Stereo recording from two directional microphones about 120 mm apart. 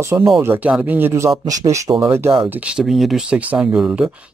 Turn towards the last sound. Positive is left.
turn(degrees=-10)  # may be behind; listen again after turning